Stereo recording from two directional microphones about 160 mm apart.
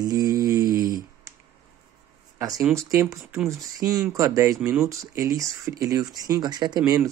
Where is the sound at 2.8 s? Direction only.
20° right (ahead or behind).